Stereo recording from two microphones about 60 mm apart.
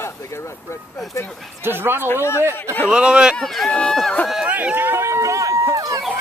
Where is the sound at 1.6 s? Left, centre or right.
Right.